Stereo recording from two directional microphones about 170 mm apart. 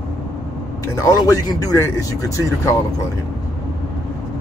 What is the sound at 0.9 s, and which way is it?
Speech, 20° left (ahead or behind).